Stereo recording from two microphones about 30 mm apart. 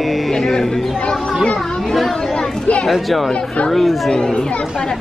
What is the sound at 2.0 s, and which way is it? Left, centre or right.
Speech, centre.